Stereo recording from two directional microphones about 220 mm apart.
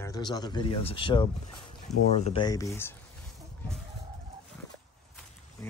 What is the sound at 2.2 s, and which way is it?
Speech, 20° left (ahead or behind).